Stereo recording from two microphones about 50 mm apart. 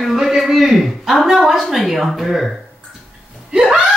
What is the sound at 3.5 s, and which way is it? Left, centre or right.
Laughter, centre.